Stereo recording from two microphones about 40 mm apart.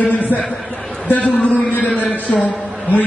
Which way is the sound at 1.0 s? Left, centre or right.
Left.